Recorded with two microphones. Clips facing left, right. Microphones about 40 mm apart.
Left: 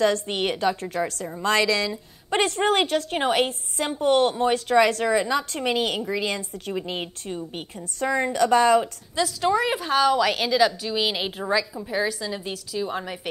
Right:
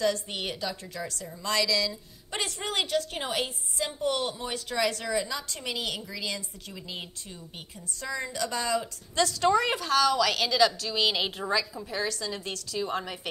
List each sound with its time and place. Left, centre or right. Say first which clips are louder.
0.0 s a woman's voice: left 6 dB; left
9.1 s a woman's voice: left 1 dB; centre
9.8 s a woman's voice: left 4 dB; left